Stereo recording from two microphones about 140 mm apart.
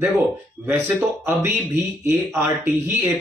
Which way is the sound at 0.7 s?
15° right (ahead or behind).